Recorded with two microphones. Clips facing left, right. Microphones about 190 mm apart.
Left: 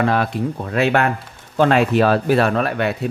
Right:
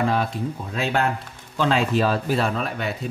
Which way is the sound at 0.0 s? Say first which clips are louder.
Left 4 dB; 70° left (ahead or behind).